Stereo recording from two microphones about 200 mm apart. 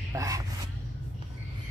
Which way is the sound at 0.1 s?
15° right (ahead or behind).